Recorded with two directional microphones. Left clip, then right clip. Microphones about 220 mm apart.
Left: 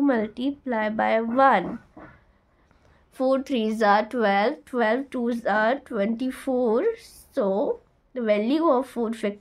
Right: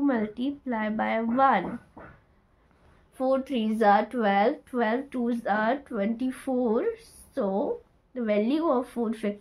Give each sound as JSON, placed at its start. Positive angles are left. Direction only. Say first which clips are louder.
{"t": 0.0, "sound": "speech", "louder": "left 4 dB", "side_deg": 50}
{"t": 3.2, "sound": "speech", "louder": "left 3 dB", "side_deg": 55}